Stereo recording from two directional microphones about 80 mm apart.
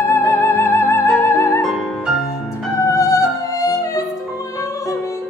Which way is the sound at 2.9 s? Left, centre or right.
Left.